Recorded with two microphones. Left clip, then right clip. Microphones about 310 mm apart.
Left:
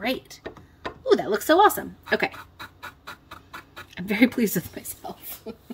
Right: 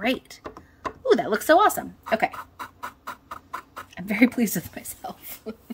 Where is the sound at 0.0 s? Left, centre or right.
Centre.